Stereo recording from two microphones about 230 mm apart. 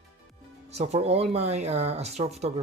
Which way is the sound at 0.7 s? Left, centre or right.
Right.